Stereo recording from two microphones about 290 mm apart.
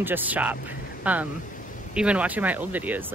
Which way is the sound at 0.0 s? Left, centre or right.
Centre.